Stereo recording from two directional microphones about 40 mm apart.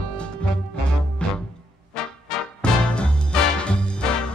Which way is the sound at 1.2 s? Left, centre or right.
Left.